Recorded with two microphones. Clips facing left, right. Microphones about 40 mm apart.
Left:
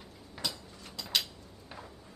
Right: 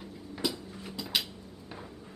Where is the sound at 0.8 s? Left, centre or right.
Centre.